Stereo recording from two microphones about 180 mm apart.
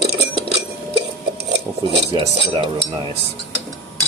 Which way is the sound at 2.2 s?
30° right (ahead or behind).